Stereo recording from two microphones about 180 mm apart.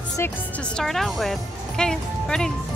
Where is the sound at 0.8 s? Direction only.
Centre (ahead or behind).